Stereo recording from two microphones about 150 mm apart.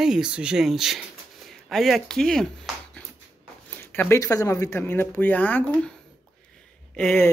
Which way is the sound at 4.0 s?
15° left (ahead or behind).